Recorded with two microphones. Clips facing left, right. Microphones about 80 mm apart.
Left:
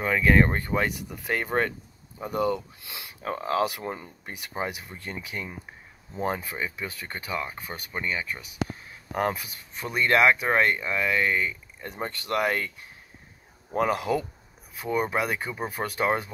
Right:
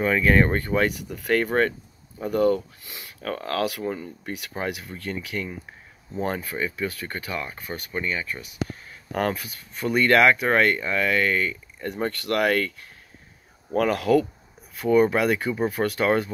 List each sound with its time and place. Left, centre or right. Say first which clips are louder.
0.0 s speech: right 2 dB; centre
3.8 s speech: right 5 dB; left
4.8 s speech: right 5 dB; left
9.1 s speech: right 2 dB; centre
13.7 s speech: right 5 dB; centre